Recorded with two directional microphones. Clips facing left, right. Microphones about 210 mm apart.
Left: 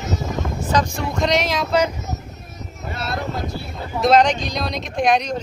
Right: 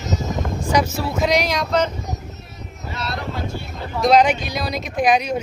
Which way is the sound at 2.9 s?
50° left (ahead or behind).